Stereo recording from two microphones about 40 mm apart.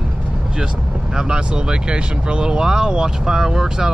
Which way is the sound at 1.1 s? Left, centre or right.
Right.